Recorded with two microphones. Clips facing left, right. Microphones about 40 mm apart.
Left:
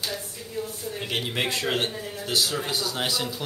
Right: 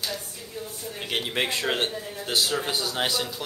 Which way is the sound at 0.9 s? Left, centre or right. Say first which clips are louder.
Right 1 dB; centre.